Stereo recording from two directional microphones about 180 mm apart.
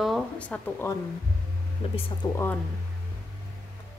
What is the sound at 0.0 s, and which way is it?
Speech, 5° left (ahead or behind).